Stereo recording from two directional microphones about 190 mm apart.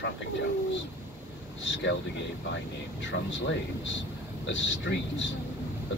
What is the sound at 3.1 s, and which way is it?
Speech, 75° left (ahead or behind).